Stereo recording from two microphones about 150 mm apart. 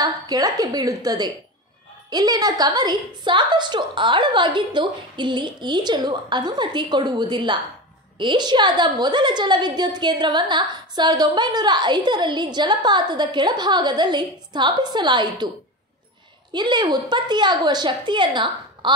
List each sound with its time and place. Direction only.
0.0 s a woman's voice: 25° right (ahead or behind)
16.5 s a woman's voice: 30° right (ahead or behind)